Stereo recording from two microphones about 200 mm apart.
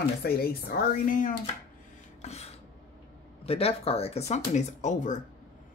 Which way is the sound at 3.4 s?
30° left (ahead or behind).